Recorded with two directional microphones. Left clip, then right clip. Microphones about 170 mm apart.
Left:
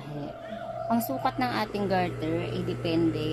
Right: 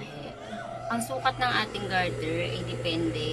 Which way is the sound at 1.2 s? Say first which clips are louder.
Right 2 dB; 40° left (ahead or behind).